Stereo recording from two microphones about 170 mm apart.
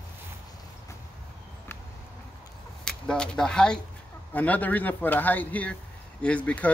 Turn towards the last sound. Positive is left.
turn(degrees=10)  # may be behind; listen again after turning